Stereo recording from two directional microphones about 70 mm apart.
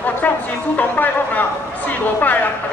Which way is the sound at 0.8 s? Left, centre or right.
Left.